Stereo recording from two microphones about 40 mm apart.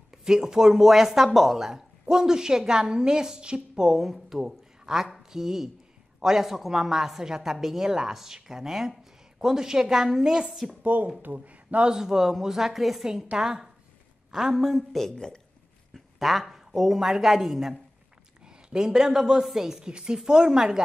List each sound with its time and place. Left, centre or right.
0.1 s a woman's voice: centre
10.8 s speech: right
11.8 s speech: centre
14.8 s a woman's voice: centre
15.1 s speech: centre
15.9 s a woman's voice: centre
18.4 s a woman's voice: right